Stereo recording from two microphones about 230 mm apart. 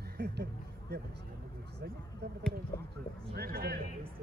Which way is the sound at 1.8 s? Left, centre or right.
Right.